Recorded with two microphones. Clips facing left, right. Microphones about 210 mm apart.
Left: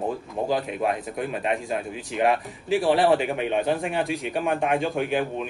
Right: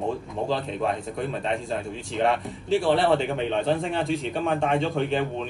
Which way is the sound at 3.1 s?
15° left (ahead or behind).